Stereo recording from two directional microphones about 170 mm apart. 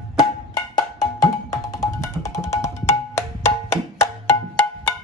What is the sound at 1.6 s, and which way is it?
Music, 15° left (ahead or behind).